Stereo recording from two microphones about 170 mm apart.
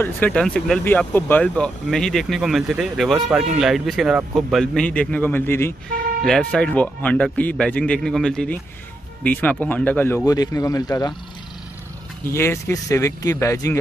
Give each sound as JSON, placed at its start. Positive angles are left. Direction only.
{"t": 0.0, "sound": "speech", "side_deg": 10}
{"t": 12.3, "sound": "speech", "side_deg": 15}